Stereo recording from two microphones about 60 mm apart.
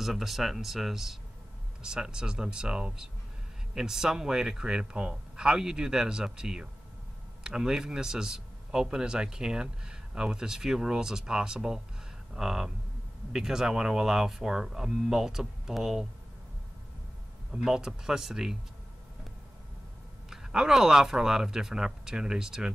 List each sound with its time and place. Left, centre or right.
0.0 s a man's voice: centre
17.5 s a man's voice: centre
20.2 s a man's voice: centre